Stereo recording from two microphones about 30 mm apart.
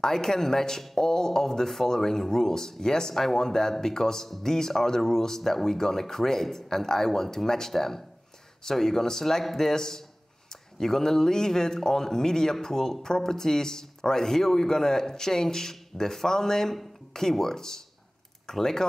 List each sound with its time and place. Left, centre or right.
0.0 s speech: centre